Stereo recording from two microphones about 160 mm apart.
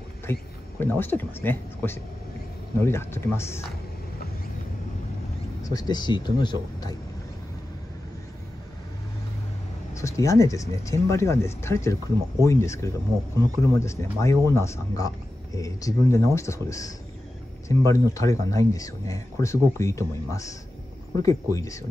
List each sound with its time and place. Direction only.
0.3 s speech: 15° left (ahead or behind)
5.6 s speech: 25° left (ahead or behind)
9.9 s speech: 20° left (ahead or behind)